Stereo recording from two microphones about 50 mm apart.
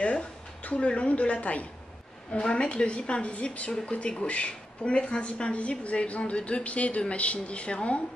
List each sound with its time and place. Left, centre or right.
0.0 s a woman's voice: left